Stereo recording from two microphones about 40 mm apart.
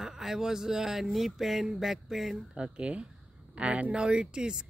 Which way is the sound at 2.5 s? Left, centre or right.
Right.